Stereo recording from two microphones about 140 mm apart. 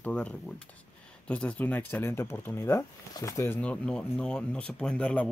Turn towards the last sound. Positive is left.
turn(degrees=10)  # may be behind; listen again after turning